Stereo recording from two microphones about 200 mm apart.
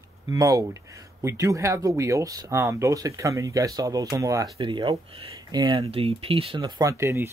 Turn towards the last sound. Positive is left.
turn(degrees=-15)  # may be behind; listen again after turning